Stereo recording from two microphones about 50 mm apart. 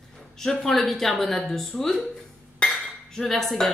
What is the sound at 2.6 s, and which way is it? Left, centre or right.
Dishes, centre.